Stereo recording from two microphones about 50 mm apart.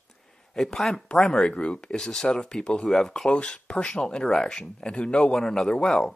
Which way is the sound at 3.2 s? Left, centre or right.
Left.